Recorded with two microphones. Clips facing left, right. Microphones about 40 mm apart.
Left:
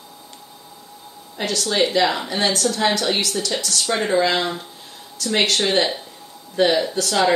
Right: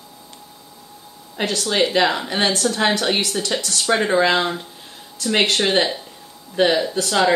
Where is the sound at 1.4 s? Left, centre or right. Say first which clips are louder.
Right 1 dB; right.